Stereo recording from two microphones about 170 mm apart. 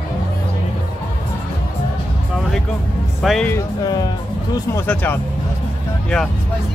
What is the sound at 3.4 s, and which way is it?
Speech, 20° left (ahead or behind).